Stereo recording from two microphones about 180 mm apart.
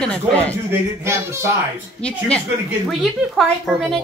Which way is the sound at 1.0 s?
15° right (ahead or behind).